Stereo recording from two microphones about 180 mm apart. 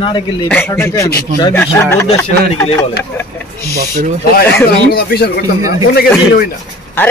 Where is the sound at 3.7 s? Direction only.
55° right (ahead or behind).